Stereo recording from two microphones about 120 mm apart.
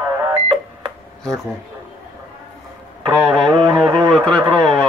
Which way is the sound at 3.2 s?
Centre (ahead or behind).